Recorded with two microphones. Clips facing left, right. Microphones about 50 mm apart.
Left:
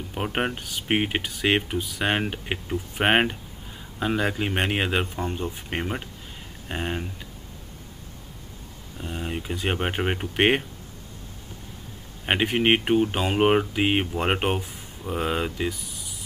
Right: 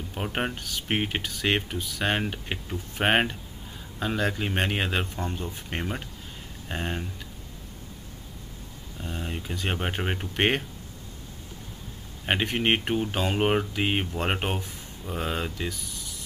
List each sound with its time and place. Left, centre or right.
0.1 s speech: centre
8.9 s speech: centre
12.3 s speech: centre